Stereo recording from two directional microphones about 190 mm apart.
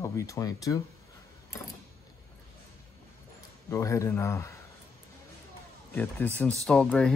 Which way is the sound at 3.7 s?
15° left (ahead or behind).